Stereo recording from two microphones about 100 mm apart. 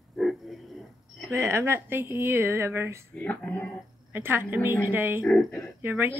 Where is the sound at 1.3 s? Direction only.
30° right (ahead or behind).